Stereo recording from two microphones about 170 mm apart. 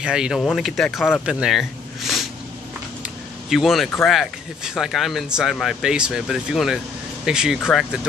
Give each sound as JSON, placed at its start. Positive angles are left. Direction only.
{"t": 0.0, "sound": "speech", "side_deg": -5}
{"t": 3.0, "sound": "a sound", "side_deg": 0}
{"t": 4.0, "sound": "speech", "side_deg": 0}